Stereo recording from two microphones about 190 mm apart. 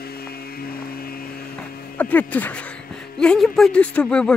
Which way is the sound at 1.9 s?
10° left (ahead or behind).